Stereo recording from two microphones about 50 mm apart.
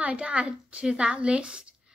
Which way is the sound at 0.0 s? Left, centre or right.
Right.